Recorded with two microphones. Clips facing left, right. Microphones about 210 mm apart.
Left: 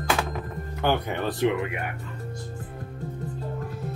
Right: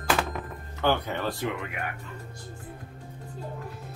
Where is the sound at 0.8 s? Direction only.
20° left (ahead or behind).